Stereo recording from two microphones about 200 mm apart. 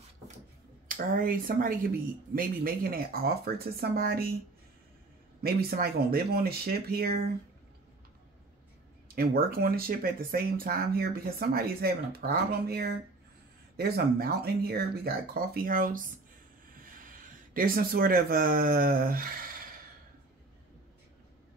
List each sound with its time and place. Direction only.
0.8 s speech: 45° right (ahead or behind)
5.4 s speech: 50° right (ahead or behind)
9.1 s speech: 50° right (ahead or behind)